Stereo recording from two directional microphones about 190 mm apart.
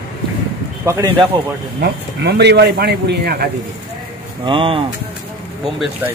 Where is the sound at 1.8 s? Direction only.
60° right (ahead or behind).